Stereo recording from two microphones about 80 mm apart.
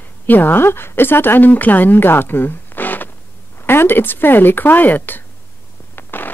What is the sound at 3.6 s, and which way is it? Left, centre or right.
Speech, left.